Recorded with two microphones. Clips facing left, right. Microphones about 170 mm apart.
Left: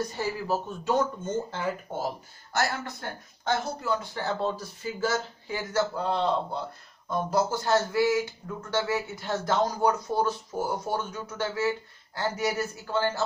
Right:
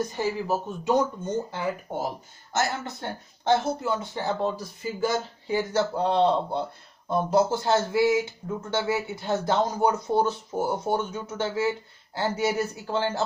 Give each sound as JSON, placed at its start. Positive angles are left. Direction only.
{"t": 0.2, "sound": "speech", "side_deg": -15}
{"t": 2.5, "sound": "speech", "side_deg": -25}